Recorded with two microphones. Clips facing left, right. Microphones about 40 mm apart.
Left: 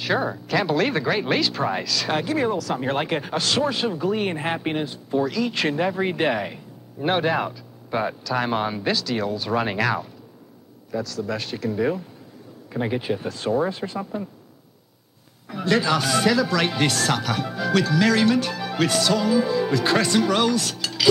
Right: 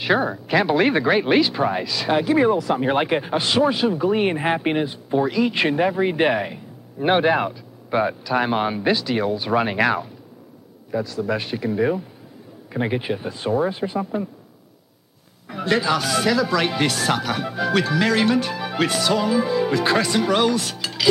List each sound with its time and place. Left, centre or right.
0.0 s speech: centre
5.8 s speech: centre
6.1 s speech: centre
15.4 s speech: centre
15.9 s speech: centre
19.9 s speech: centre